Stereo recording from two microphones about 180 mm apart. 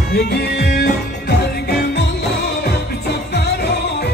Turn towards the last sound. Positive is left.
turn(degrees=65)  # may be behind; listen again after turning